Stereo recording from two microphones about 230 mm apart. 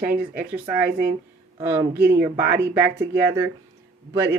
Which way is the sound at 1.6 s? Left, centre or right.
Centre.